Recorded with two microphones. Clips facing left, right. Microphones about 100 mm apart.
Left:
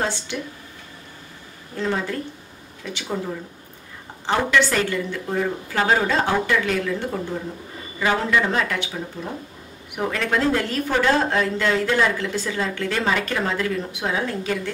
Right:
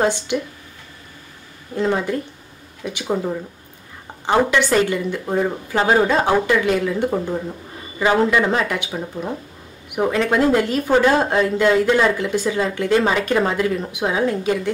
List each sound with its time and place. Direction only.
0.0 s speech: 15° right (ahead or behind)
1.8 s speech: 20° right (ahead or behind)
4.3 s a woman's voice: 15° right (ahead or behind)